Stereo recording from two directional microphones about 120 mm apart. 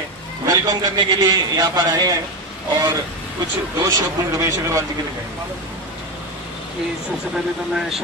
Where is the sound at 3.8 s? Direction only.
25° right (ahead or behind).